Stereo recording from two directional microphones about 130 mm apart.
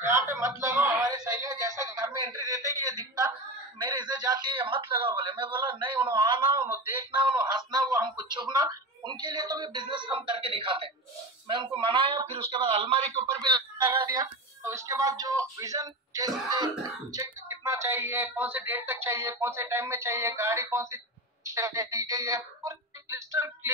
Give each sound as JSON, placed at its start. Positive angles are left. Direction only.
{"t": 0.0, "sound": "a sound", "side_deg": -20}
{"t": 7.1, "sound": "speech", "side_deg": -35}
{"t": 13.3, "sound": "speech", "side_deg": -35}
{"t": 14.2, "sound": "speech", "side_deg": -20}